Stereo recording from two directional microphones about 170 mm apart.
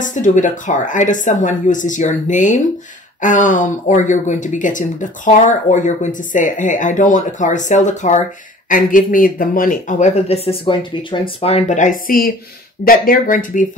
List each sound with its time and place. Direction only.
0.0 s speech: 45° left (ahead or behind)